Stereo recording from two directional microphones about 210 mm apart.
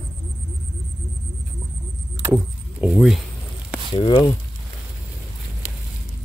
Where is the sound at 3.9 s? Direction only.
25° left (ahead or behind).